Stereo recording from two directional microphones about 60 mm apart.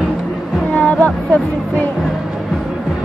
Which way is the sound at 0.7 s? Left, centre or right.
Centre.